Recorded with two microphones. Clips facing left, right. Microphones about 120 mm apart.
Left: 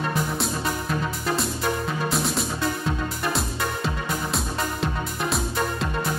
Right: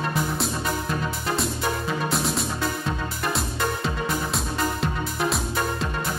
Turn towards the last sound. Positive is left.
turn(degrees=0)  # may be behind; listen again after turning